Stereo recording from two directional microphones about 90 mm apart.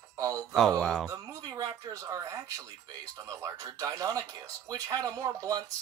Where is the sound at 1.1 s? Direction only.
45° right (ahead or behind).